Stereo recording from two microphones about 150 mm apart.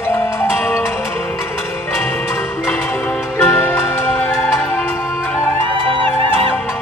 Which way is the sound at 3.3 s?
15° left (ahead or behind).